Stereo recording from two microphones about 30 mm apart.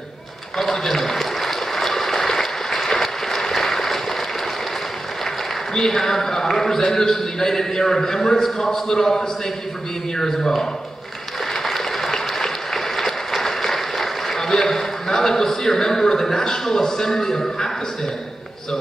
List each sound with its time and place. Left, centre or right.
0.6 s a man's voice: centre
1.2 s a sound: centre
5.8 s a man's voice: centre
11.6 s applause: centre
14.5 s a man's voice: centre